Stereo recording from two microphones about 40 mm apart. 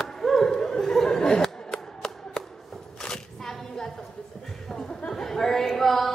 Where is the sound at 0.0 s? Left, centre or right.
Centre.